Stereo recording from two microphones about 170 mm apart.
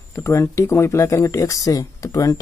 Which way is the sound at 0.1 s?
15° left (ahead or behind).